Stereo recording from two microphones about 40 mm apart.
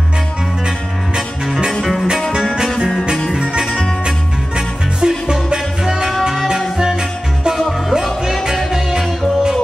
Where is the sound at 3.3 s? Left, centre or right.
Centre.